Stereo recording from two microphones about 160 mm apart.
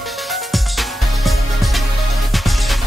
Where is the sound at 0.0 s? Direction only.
Centre (ahead or behind).